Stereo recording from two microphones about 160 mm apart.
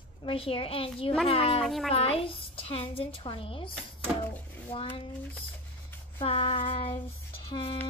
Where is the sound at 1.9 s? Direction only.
40° left (ahead or behind).